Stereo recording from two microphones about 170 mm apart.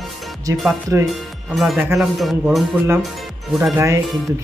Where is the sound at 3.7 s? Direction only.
15° right (ahead or behind).